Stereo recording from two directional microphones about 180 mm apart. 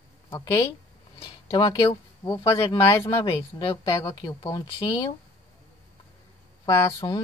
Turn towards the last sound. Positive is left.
turn(degrees=20)  # may be behind; listen again after turning